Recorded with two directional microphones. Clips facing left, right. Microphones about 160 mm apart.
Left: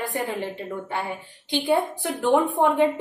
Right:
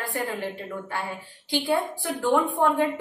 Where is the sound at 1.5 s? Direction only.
20° left (ahead or behind).